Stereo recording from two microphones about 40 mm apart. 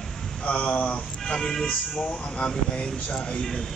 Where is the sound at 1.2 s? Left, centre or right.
Centre.